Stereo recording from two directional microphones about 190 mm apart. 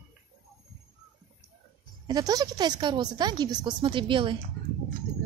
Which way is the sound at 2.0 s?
20° right (ahead or behind).